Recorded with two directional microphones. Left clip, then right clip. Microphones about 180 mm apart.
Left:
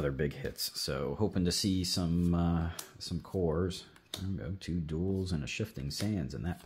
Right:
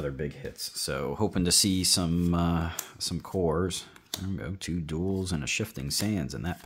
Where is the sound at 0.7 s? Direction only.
15° right (ahead or behind).